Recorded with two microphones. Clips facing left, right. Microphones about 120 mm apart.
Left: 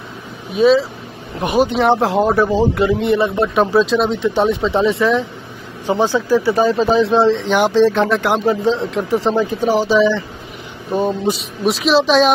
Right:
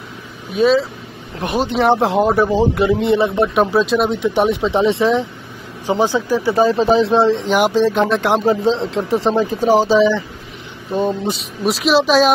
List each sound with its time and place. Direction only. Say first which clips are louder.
0.6 s speech: left 2 dB; centre (ahead or behind)
1.4 s speech: left 4 dB; 10° left (ahead or behind)
1.9 s a man's voice: even; 20° right (ahead or behind)
9.9 s a man's voice: even; 15° right (ahead or behind)
11.0 s speech: left 1 dB; 5° left (ahead or behind)